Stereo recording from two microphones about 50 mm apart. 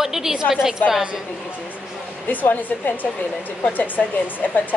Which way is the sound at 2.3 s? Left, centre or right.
Left.